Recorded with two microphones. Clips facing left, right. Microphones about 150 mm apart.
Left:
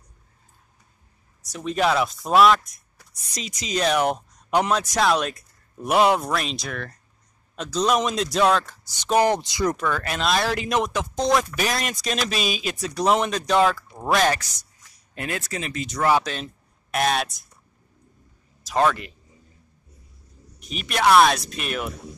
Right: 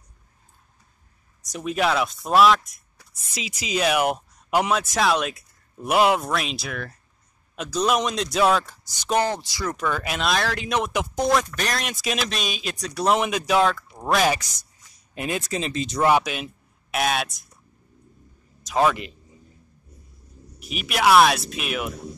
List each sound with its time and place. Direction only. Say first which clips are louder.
1.4 s speech: right 2 dB; 15° right (ahead or behind)
1.7 s speech: left 1 dB; centre (ahead or behind)
9.1 s speech: left 3 dB; 15° left (ahead or behind)
9.8 s speech: even; 5° right (ahead or behind)
10.9 s speech: even; 10° right (ahead or behind)
11.3 s speech: left 1 dB; 5° left (ahead or behind)
14.2 s speech: even; 15° right (ahead or behind)
16.1 s speech: left 1 dB; 10° right (ahead or behind)
18.6 s a sound: even; centre (ahead or behind)
20.5 s speech: even; 5° right (ahead or behind)